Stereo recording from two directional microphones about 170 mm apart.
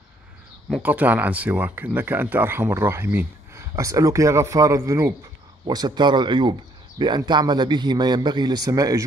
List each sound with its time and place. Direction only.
0.7 s a man's voice: 5° right (ahead or behind); by 9.0 s 20° right (ahead or behind)